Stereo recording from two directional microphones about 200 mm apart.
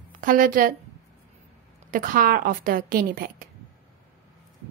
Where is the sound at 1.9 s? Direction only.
45° right (ahead or behind).